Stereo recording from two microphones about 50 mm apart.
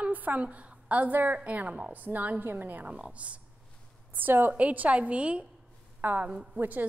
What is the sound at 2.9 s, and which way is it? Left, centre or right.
Speech, right.